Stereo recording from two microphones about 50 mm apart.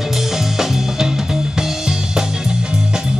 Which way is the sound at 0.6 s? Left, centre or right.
Centre.